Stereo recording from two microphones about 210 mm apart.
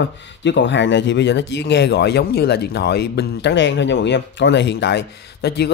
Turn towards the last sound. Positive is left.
turn(degrees=50)  # may be behind; listen again after turning